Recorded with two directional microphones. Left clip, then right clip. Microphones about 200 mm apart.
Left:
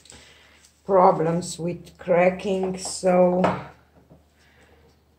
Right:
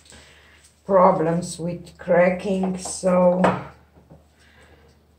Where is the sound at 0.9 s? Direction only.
45° left (ahead or behind).